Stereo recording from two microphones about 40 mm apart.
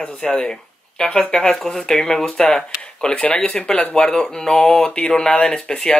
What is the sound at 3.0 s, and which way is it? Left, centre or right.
Speech, left.